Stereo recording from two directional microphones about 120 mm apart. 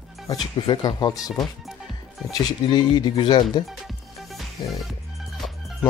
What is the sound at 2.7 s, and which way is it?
Speech, 40° left (ahead or behind).